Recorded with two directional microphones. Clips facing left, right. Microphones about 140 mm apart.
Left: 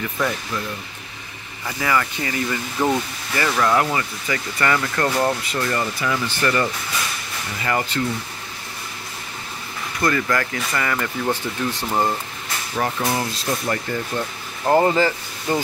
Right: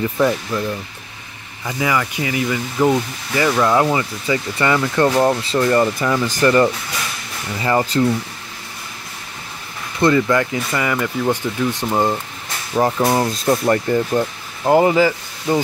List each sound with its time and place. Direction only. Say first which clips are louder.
1.7 s speech: right 2 dB; 15° right (ahead or behind); by 5.8 s 30° right (ahead or behind)
5.8 s speech: right 7 dB; 45° right (ahead or behind)
9.9 s speech: right 6 dB; 20° right (ahead or behind)
12.7 s speech: right 7 dB; 40° right (ahead or behind)
14.6 s speech: right 3 dB; 10° right (ahead or behind)